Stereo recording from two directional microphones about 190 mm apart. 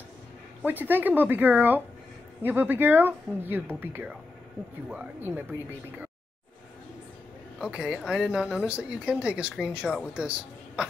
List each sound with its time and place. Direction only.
0.6 s speech: 10° right (ahead or behind)
7.5 s speech: 5° right (ahead or behind)